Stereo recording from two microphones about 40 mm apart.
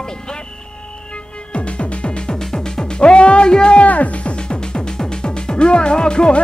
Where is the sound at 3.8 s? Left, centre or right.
Left.